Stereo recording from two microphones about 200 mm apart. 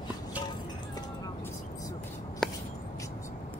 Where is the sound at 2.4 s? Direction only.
5° left (ahead or behind).